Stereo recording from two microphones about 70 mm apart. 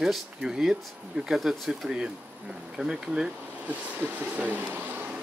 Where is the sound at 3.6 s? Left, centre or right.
Right.